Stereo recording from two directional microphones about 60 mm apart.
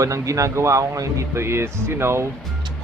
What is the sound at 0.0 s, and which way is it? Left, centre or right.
Speech, right.